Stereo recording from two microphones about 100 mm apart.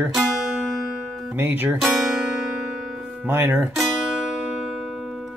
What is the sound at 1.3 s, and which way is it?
Speech, 20° right (ahead or behind).